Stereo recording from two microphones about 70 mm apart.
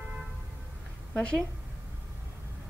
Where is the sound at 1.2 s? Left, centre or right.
Centre.